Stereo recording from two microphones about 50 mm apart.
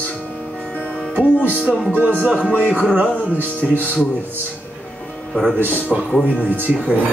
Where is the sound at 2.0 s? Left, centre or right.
Right.